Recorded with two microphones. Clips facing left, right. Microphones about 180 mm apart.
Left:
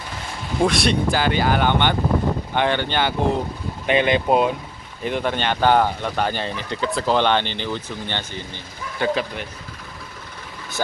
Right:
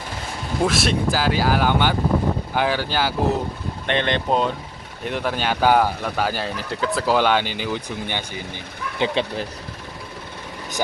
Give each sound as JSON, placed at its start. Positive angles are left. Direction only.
{"t": 0.6, "sound": "speech", "side_deg": -5}